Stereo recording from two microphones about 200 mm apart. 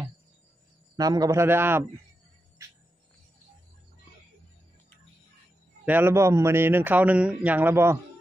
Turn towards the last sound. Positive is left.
turn(degrees=-10)  # may be behind; listen again after turning